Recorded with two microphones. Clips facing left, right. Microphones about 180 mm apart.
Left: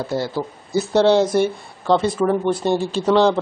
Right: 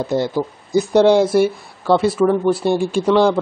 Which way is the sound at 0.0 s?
20° right (ahead or behind).